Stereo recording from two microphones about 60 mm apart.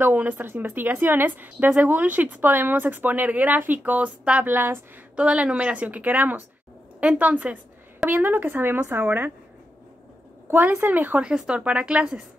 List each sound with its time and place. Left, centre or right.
0.0 s a woman's voice: right
4.5 s a woman's voice: right
5.1 s a woman's voice: centre
10.5 s a woman's voice: right
11.2 s speech: centre